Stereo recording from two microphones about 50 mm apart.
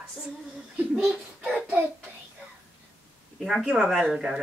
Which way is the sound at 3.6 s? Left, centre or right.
Right.